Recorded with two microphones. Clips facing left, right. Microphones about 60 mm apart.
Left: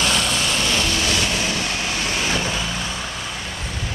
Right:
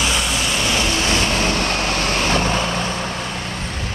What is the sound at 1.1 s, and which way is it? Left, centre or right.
Vehicle, right.